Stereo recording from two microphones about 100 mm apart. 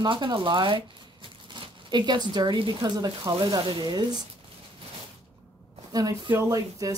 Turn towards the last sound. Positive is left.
turn(degrees=-40)  # may be behind; listen again after turning